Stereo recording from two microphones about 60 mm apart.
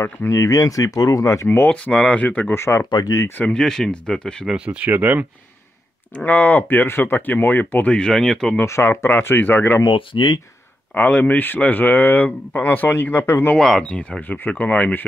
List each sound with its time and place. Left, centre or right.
0.0 s speech: left
1.7 s speech: centre
2.5 s speech: left
2.8 s speech: left
3.5 s speech: centre
4.5 s speech: centre
6.1 s speech: left
8.1 s speech: centre
8.6 s speech: left
9.1 s speech: left
11.0 s speech: left
13.6 s speech: centre
13.8 s speech: centre
14.2 s speech: left